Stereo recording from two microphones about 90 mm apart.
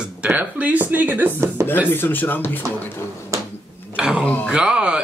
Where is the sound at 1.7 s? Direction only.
20° left (ahead or behind).